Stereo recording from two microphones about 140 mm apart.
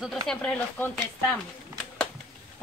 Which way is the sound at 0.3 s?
10° left (ahead or behind).